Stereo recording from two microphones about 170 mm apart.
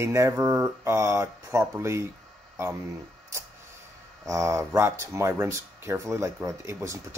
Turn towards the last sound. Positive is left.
turn(degrees=-15)  # may be behind; listen again after turning